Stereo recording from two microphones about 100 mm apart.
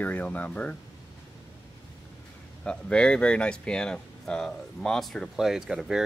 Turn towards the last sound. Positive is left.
turn(degrees=-5)  # may be behind; listen again after turning